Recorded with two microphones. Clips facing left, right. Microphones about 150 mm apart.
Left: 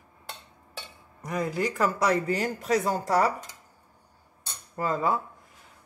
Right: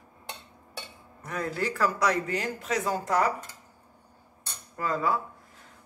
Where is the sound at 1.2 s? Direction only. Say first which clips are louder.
Left 3 dB; 15° left (ahead or behind); by 3.3 s 35° left (ahead or behind).